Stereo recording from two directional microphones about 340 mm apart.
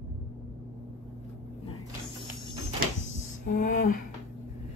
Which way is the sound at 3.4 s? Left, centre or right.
Left.